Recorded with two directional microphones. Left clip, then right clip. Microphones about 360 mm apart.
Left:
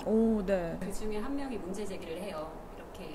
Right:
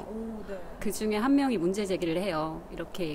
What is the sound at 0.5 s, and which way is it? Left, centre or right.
Speech, left.